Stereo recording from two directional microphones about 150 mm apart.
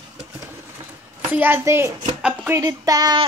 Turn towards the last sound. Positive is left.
turn(degrees=-25)  # may be behind; listen again after turning